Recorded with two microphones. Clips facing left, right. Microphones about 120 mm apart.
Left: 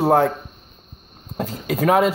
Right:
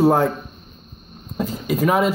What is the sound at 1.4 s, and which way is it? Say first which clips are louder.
Speech: right 1 dB; 75° left (ahead or behind).